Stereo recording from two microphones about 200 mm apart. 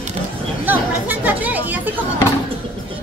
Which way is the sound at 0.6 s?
10° right (ahead or behind).